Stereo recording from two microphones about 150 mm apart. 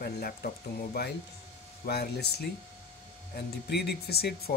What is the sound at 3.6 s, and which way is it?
Speech, 90° left.